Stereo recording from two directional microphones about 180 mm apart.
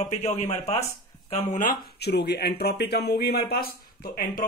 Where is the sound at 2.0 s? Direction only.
65° left (ahead or behind).